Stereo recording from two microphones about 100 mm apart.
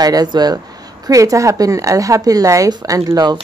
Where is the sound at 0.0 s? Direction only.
40° right (ahead or behind).